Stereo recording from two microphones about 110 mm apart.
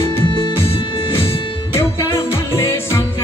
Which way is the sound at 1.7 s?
25° left (ahead or behind).